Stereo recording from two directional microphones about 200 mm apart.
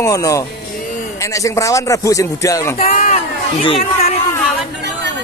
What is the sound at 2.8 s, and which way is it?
Speech, 40° left (ahead or behind).